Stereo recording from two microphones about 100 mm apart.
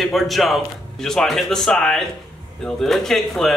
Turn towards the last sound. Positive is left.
turn(degrees=5)  # may be behind; listen again after turning